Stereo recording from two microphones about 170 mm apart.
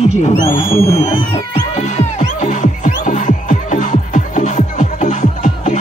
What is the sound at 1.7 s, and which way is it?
Music, 45° left (ahead or behind).